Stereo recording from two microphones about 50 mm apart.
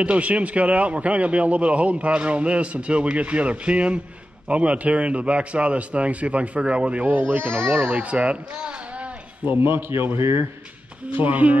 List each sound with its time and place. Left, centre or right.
0.0 s speech: right
7.1 s speech: right
7.8 s speech: right
9.5 s a man's voice: right
11.1 s speech: right